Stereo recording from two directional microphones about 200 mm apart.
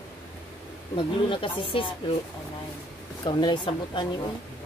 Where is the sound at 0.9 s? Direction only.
25° left (ahead or behind).